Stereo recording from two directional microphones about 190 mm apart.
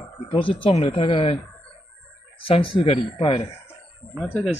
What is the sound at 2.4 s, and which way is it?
Speech, 25° left (ahead or behind).